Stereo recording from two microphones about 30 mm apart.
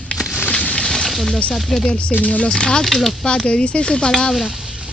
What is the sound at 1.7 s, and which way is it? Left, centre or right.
Speech, centre.